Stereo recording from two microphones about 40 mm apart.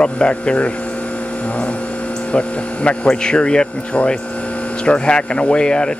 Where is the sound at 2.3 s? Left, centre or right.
Left.